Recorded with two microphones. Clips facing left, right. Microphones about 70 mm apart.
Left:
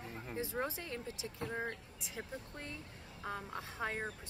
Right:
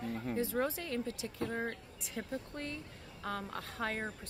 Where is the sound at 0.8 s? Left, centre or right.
Centre.